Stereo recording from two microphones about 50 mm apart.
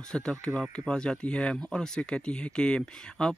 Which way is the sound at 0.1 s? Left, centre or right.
Centre.